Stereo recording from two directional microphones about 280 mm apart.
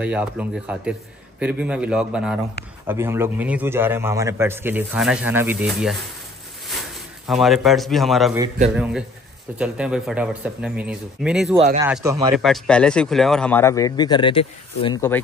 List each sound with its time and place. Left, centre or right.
0.0 s a man's voice: centre
7.2 s speech: centre
11.5 s speech: right
11.8 s a man's voice: centre